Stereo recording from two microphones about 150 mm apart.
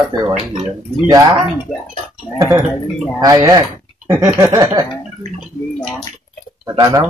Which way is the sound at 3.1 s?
25° right (ahead or behind).